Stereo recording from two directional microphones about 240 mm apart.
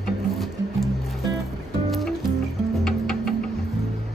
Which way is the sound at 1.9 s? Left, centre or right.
Centre.